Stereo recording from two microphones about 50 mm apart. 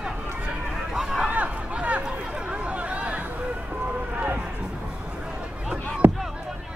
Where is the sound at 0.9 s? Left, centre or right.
Centre.